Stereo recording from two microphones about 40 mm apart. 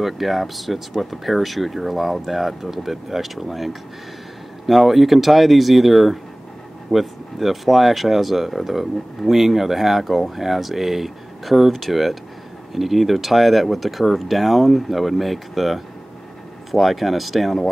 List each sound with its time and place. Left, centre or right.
0.0 s speech: centre